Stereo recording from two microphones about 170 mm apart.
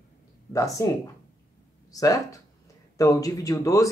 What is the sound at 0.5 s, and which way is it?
Speech, 20° left (ahead or behind).